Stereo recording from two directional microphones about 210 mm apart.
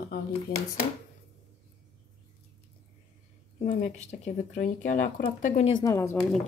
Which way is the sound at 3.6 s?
35° left (ahead or behind).